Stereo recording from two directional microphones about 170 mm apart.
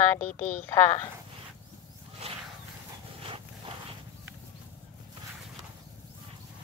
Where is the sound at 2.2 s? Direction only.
40° right (ahead or behind).